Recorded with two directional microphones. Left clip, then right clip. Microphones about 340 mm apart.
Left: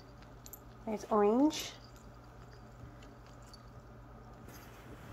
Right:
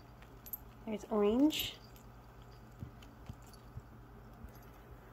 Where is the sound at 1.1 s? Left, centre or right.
Centre.